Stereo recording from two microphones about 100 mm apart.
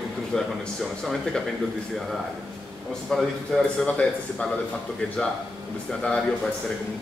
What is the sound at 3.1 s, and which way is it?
A man's voice, 5° left (ahead or behind).